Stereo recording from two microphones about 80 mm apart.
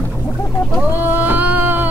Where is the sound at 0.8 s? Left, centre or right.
Right.